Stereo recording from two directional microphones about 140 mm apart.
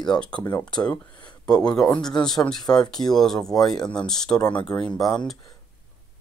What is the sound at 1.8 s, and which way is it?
Speech, 5° left (ahead or behind).